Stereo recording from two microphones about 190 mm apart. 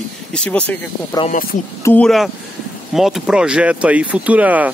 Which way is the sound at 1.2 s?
20° left (ahead or behind).